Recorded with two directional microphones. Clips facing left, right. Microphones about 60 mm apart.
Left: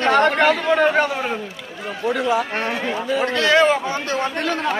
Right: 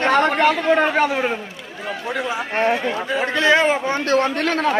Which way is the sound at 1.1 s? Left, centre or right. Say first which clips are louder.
Right 3 dB; right.